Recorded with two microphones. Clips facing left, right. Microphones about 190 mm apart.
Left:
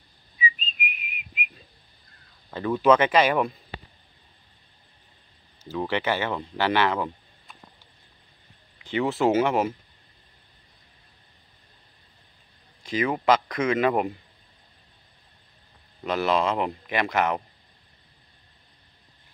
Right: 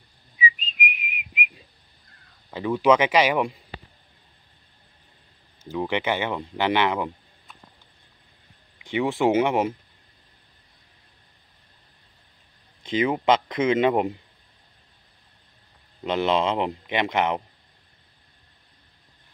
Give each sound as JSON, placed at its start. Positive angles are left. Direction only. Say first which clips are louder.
{"t": 0.9, "sound": "whistling", "louder": "right 4 dB", "side_deg": -15}
{"t": 2.5, "sound": "speech", "louder": "even", "side_deg": -10}
{"t": 5.6, "sound": "speech", "louder": "right 1 dB", "side_deg": -15}
{"t": 8.7, "sound": "speech", "louder": "right 1 dB", "side_deg": -15}
{"t": 12.8, "sound": "speech", "louder": "right 2 dB", "side_deg": -20}
{"t": 16.0, "sound": "speech", "louder": "right 1 dB", "side_deg": -20}